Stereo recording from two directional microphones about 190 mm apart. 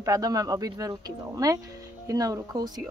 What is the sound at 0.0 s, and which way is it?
Speech, 20° right (ahead or behind).